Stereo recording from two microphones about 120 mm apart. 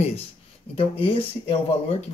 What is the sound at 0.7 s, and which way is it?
Speech, 50° left (ahead or behind).